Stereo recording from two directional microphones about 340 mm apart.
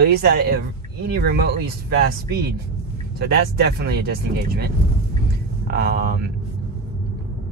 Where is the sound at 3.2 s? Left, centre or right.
Right.